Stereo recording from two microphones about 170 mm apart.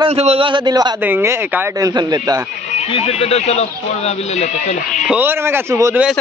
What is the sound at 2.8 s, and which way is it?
Speech, 35° left (ahead or behind).